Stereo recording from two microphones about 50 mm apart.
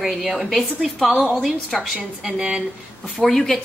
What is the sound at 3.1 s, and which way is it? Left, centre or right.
Speech, centre.